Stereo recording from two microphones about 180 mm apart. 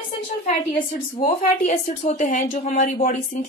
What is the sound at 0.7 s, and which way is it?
Speech, 40° left (ahead or behind).